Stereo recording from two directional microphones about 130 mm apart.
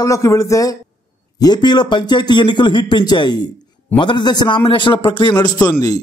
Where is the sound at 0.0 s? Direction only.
25° left (ahead or behind); by 5.3 s 40° left (ahead or behind).